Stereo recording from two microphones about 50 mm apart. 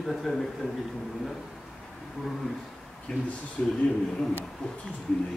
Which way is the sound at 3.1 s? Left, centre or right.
Centre.